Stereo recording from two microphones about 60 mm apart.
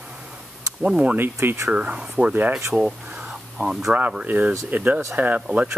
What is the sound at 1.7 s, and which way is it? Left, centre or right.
Speech, right.